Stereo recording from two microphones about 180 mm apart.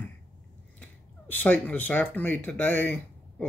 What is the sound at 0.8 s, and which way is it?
Speech, 10° left (ahead or behind).